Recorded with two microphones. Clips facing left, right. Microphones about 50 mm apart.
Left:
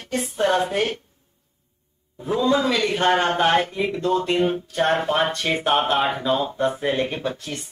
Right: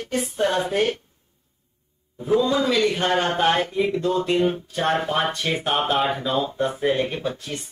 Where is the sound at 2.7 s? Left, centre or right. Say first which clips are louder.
Right 1 dB; left.